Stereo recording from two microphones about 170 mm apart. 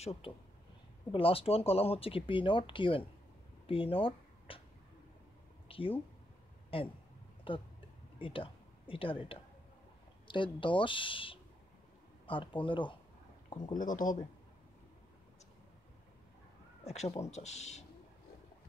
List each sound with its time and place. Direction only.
0.0 s speech: 35° left (ahead or behind)
5.7 s speech: 30° left (ahead or behind)
13.7 s speech: 50° left (ahead or behind)
16.8 s speech: 40° left (ahead or behind)